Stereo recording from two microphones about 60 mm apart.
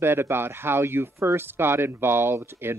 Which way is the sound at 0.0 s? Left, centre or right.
Right.